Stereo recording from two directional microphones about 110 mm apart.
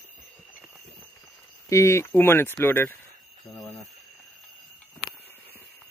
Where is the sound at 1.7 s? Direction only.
25° left (ahead or behind).